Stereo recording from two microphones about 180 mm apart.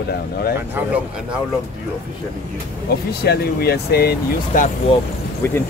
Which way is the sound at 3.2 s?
60° left (ahead or behind).